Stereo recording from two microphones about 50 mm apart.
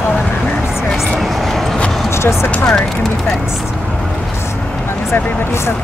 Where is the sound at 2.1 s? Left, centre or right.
Left.